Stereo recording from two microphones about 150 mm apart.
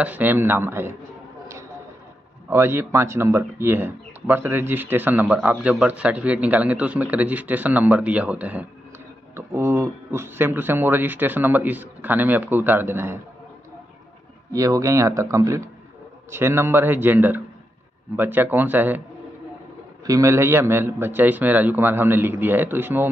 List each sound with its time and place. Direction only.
0.0 s speech: 10° right (ahead or behind)
2.5 s speech: 15° right (ahead or behind)
14.5 s speech: 20° right (ahead or behind)
20.1 s speech: 20° right (ahead or behind)